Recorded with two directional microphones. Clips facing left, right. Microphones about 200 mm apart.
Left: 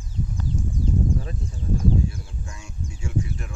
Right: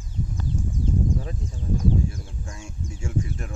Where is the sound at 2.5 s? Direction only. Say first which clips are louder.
Right 1 dB; 45° right (ahead or behind).